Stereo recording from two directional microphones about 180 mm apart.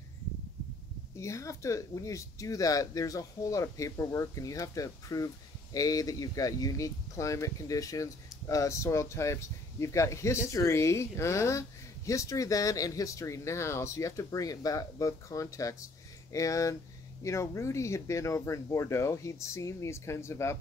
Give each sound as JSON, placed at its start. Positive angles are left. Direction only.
{"t": 1.2, "sound": "speech", "side_deg": 15}